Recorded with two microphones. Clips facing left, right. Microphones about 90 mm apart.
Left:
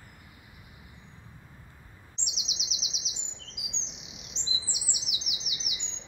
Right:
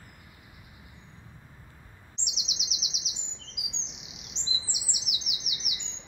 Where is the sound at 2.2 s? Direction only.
20° right (ahead or behind).